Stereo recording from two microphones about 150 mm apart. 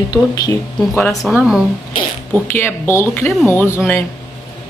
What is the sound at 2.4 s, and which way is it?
Speech, 15° left (ahead or behind).